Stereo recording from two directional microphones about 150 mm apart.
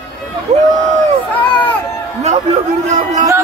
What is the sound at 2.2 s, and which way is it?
Speech, 50° right (ahead or behind).